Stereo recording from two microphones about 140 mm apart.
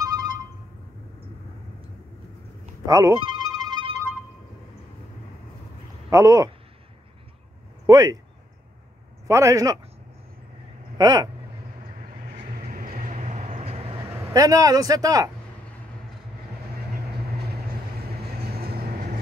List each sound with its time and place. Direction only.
0.0 s a sound: 25° right (ahead or behind)
2.9 s speech: 20° right (ahead or behind)
3.2 s music: 30° right (ahead or behind)
6.0 s speech: 20° right (ahead or behind)
7.8 s speech: 25° right (ahead or behind)
9.3 s speech: 20° right (ahead or behind)
11.0 s speech: 30° right (ahead or behind)
12.3 s vehicle: 90° right; by 14.0 s 45° right (ahead or behind)
14.3 s speech: 25° right (ahead or behind)